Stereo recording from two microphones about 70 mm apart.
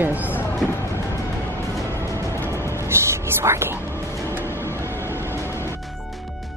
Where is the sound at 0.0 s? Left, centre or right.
Right.